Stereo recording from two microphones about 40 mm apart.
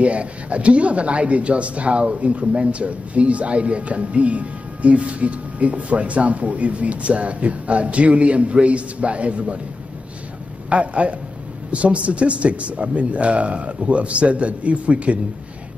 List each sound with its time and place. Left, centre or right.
0.0 s speech: right
10.7 s speech: right